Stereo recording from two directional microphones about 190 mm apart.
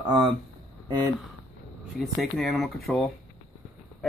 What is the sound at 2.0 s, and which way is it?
Speech, centre (ahead or behind).